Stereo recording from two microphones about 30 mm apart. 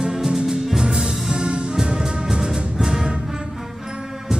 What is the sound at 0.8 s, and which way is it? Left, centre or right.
Music, right.